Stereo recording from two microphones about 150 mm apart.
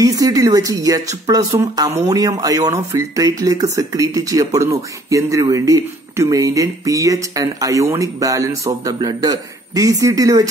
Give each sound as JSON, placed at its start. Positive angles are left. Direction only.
{"t": 0.0, "sound": "speech", "side_deg": -25}